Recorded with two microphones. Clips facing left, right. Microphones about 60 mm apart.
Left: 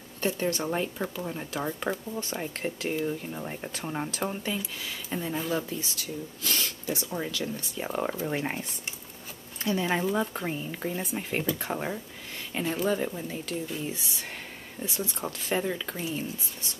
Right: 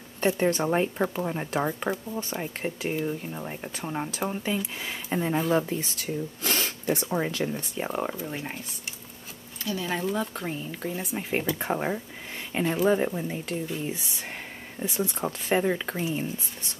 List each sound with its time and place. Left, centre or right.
0.2 s speech: right
1.7 s speech: centre
4.6 s speech: right
7.1 s speech: right
7.9 s speech: centre
8.3 s speech: centre
9.6 s speech: left
10.0 s a woman's voice: centre
10.9 s speech: centre
11.6 s speech: centre
14.8 s speech: centre